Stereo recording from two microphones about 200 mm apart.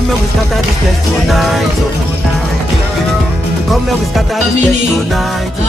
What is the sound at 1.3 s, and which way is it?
Music, centre (ahead or behind).